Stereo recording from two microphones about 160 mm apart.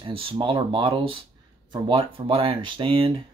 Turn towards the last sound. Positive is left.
turn(degrees=-35)  # may be behind; listen again after turning